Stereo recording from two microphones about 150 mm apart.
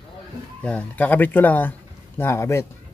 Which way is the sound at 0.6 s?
10° left (ahead or behind).